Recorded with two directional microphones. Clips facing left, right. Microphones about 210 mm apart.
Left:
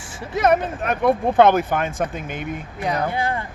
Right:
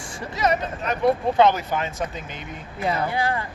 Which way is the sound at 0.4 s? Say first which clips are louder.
Left 5 dB; 55° left (ahead or behind).